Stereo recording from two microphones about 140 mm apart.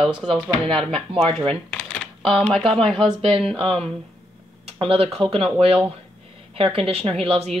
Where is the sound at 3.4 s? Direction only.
45° right (ahead or behind).